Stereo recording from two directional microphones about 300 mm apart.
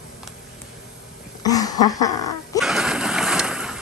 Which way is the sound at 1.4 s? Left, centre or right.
Centre.